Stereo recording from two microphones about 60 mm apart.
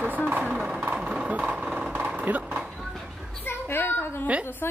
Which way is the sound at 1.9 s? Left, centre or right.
Right.